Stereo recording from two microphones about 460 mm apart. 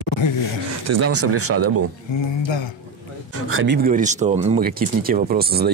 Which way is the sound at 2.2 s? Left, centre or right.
Left.